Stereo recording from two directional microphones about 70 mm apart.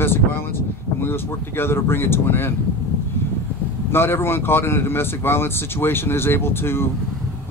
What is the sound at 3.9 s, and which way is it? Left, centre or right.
Speech, left.